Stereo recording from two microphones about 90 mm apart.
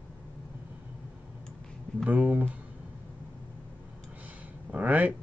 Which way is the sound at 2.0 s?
15° right (ahead or behind).